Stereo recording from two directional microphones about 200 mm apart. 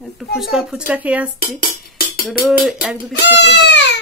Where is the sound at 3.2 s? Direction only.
60° left (ahead or behind).